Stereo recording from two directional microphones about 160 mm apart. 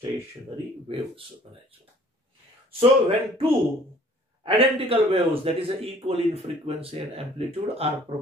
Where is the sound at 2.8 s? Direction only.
35° right (ahead or behind).